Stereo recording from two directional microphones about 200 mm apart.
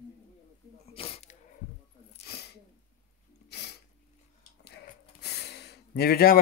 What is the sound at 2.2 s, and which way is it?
Sneeze, 55° left (ahead or behind).